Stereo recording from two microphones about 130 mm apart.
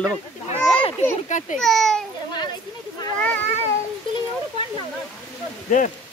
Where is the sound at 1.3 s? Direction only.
70° left (ahead or behind).